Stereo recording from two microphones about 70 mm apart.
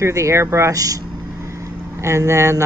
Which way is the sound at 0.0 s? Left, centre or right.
Right.